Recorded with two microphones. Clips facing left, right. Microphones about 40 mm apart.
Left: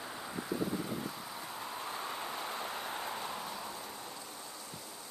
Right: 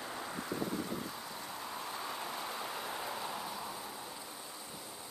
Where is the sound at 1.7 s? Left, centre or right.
Left; by 4.2 s centre.